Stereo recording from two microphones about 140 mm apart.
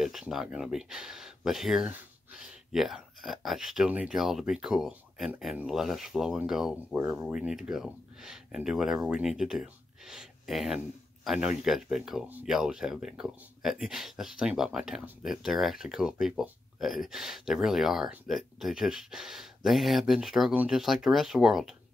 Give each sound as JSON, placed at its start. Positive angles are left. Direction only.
{"t": 0.0, "sound": "speech", "side_deg": 0}